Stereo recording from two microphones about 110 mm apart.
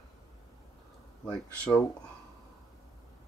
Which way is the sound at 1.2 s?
10° left (ahead or behind).